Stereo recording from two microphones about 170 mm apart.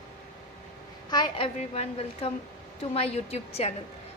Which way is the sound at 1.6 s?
40° left (ahead or behind).